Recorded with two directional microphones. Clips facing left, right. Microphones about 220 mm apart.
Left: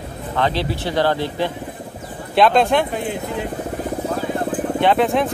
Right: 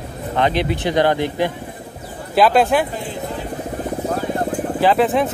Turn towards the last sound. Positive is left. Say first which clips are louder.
# right 1 dB
turn(degrees=0)  # may be behind; listen again after turning